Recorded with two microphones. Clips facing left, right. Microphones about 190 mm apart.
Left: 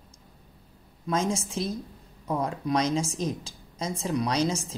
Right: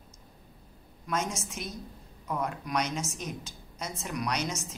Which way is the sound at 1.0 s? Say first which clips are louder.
Left 5 dB; 30° left (ahead or behind).